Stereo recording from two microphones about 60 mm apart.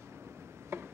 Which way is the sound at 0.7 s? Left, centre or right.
Right.